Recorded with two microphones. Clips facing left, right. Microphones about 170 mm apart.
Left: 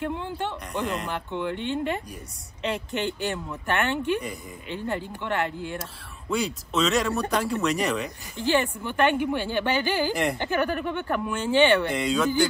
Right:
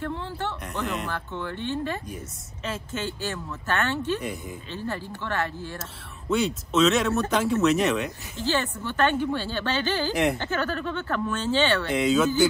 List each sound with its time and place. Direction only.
0.0 s a woman's voice: 15° left (ahead or behind)
6.2 s speech: centre (ahead or behind)
8.4 s a woman's voice: 15° left (ahead or behind)
11.9 s speech: centre (ahead or behind)